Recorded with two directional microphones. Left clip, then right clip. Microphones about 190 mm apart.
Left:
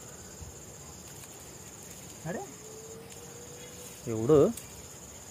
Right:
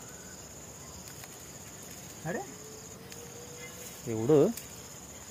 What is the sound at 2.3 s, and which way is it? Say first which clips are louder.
Speech: right 2 dB; 30° right (ahead or behind).